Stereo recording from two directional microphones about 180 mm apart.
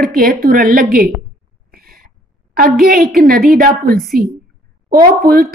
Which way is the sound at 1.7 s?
55° right (ahead or behind).